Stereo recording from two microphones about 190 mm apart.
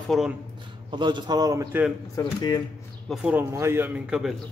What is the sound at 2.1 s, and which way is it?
Speech, 20° left (ahead or behind).